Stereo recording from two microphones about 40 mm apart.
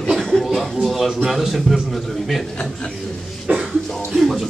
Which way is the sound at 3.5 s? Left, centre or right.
Right.